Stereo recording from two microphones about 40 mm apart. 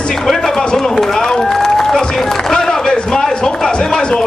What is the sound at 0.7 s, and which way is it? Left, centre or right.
Run, centre.